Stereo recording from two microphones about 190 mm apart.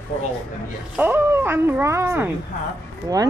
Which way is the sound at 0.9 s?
10° right (ahead or behind).